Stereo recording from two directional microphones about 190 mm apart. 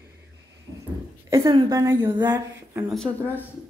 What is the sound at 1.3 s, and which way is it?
A woman's voice, 20° right (ahead or behind).